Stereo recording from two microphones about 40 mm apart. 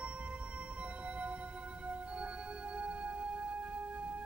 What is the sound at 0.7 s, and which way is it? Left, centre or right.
Music, right.